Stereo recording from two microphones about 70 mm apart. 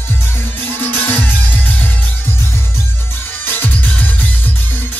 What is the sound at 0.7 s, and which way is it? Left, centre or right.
Music, left.